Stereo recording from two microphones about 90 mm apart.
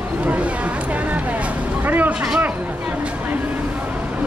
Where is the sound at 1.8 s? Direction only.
15° right (ahead or behind).